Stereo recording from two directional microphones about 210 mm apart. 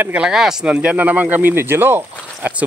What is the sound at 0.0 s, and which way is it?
Speech, 5° right (ahead or behind).